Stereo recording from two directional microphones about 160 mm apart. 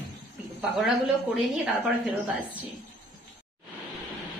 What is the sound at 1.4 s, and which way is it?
A woman's voice, 5° right (ahead or behind).